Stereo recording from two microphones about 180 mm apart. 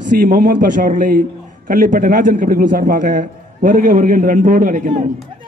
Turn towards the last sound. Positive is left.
turn(degrees=-50)  # may be behind; listen again after turning